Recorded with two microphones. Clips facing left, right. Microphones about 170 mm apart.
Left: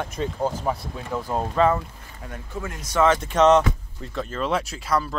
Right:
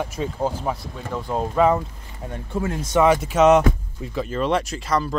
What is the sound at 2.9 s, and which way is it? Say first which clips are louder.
Speech: right 2 dB; 15° right (ahead or behind).